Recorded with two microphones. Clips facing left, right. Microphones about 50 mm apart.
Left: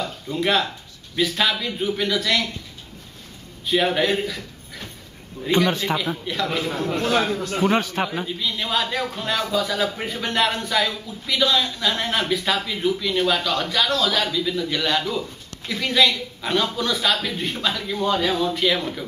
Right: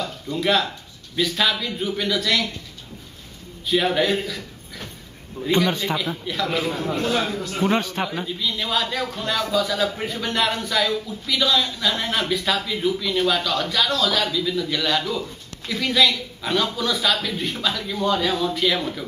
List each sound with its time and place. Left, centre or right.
0.0 s speech: centre
3.6 s a man's voice: centre